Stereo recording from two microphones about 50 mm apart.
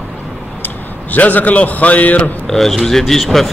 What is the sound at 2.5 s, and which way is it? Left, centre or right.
Speech, centre.